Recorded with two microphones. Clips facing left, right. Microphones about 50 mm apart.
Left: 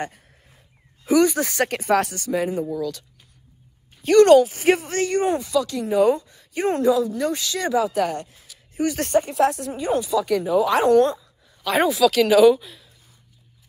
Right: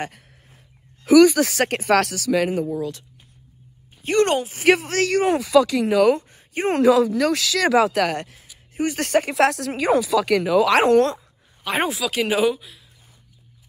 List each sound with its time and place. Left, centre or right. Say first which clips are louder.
0.0 s speech: even; right
1.2 s speech: right 5 dB; right
1.6 s a man's voice: right 1 dB; right
1.9 s speech: right 3 dB; right
2.5 s speech: right 1 dB; right
4.6 s a man's voice: right 2 dB; right
5.0 s speech: right 1 dB; right
6.1 s a sound: right 1 dB; right
6.7 s speech: right 4 dB; right
8.7 s speech: even; right
9.1 s speech: right 1 dB; right
11.6 s speech: left 5 dB; right
12.5 s speech: left 4 dB; centre